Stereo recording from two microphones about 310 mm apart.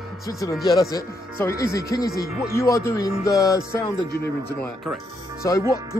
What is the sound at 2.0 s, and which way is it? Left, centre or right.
Speech, left.